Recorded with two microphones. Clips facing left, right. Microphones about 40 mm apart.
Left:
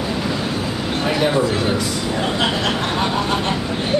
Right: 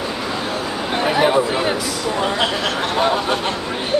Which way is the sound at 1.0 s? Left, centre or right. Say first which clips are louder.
Right 2 dB; centre.